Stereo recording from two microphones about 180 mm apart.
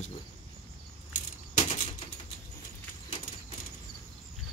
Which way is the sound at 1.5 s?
40° left (ahead or behind).